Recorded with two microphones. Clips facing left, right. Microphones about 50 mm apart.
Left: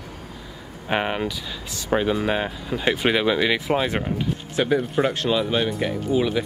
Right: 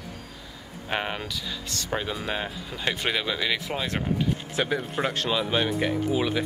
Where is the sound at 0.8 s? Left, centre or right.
Centre.